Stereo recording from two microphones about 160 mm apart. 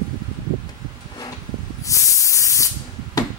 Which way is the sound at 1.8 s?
20° left (ahead or behind).